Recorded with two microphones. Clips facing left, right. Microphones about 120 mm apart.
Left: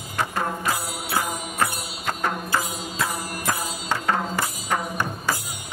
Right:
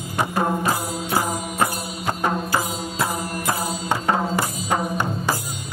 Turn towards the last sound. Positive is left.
turn(degrees=-20)  # may be behind; listen again after turning